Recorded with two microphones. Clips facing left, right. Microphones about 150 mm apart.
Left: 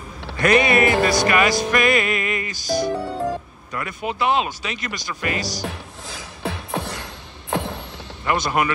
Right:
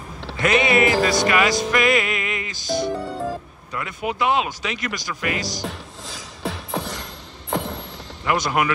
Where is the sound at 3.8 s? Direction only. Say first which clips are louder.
Even; 15° right (ahead or behind).